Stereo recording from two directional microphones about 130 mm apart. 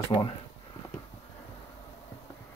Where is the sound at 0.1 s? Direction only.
30° left (ahead or behind).